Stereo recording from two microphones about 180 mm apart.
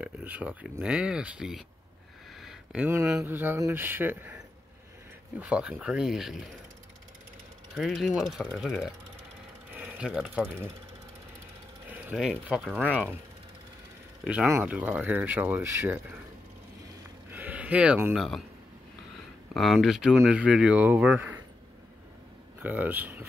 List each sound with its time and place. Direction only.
0.0 s speech: 10° right (ahead or behind)
5.4 s speech: 5° right (ahead or behind)
7.7 s speech: centre (ahead or behind)
11.9 s speech: 5° right (ahead or behind)
14.2 s speech: 5° right (ahead or behind)
17.3 s a sound: 10° right (ahead or behind)
20.2 s speech: 5° right (ahead or behind)
22.6 s speech: 10° right (ahead or behind)